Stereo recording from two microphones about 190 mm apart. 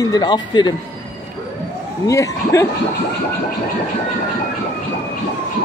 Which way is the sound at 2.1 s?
15° left (ahead or behind).